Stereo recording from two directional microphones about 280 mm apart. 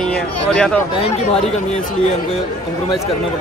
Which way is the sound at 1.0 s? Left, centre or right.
Left.